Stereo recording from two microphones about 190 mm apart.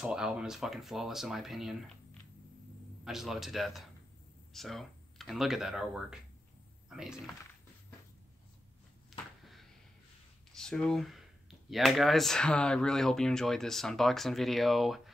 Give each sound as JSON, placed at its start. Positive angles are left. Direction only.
{"t": 0.0, "sound": "speech", "side_deg": -5}
{"t": 3.1, "sound": "speech", "side_deg": 0}
{"t": 9.4, "sound": "a sound", "side_deg": 0}
{"t": 11.7, "sound": "speech", "side_deg": 0}